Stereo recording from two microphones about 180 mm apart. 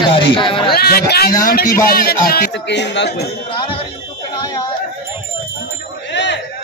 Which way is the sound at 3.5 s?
25° left (ahead or behind).